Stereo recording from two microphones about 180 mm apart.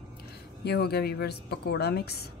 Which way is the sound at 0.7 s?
60° left (ahead or behind).